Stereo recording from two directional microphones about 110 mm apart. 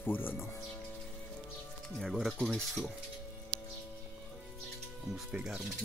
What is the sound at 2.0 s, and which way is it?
Speech, centre (ahead or behind).